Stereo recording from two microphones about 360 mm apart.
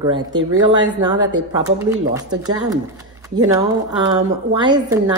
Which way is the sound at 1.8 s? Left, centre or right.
Centre.